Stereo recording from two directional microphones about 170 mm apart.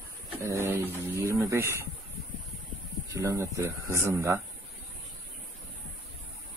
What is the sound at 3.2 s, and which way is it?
Speech, 20° right (ahead or behind).